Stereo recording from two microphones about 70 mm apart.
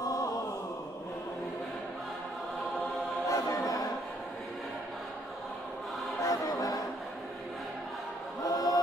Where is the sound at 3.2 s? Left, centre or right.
Left.